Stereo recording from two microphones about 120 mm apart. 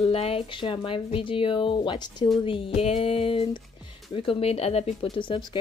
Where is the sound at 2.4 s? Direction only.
50° left (ahead or behind).